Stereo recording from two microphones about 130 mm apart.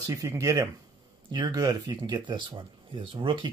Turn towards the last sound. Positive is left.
turn(degrees=-40)  # may be behind; listen again after turning